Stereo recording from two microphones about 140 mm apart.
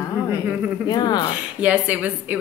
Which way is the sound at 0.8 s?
30° left (ahead or behind).